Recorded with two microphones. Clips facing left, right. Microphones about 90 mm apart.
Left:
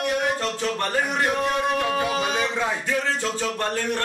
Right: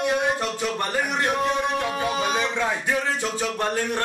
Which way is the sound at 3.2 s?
15° right (ahead or behind).